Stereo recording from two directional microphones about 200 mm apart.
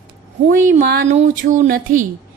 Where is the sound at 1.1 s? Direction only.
40° right (ahead or behind).